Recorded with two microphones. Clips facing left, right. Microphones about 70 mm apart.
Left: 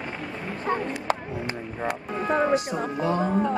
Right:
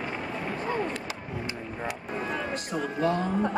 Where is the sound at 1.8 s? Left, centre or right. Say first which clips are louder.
Left 6 dB; left.